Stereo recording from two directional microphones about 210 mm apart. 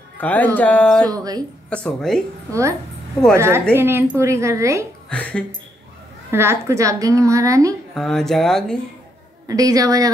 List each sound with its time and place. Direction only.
0.2 s speech: 5° left (ahead or behind)
1.1 s a woman's voice: 15° right (ahead or behind)
1.7 s speech: 5° left (ahead or behind)
3.3 s a woman's voice: 10° right (ahead or behind)
5.1 s speech: 5° left (ahead or behind)
6.3 s a woman's voice: 10° right (ahead or behind)
7.9 s speech: centre (ahead or behind)
9.5 s a woman's voice: 15° right (ahead or behind)